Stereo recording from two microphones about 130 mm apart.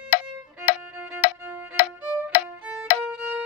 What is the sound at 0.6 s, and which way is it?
Music, 15° right (ahead or behind).